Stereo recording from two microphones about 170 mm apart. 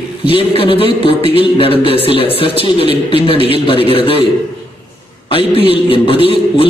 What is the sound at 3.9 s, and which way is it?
Speech, 35° left (ahead or behind).